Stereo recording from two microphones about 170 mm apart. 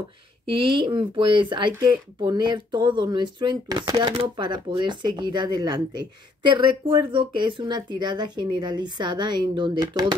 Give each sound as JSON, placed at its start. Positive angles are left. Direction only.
{"t": 0.5, "sound": "speech", "side_deg": -30}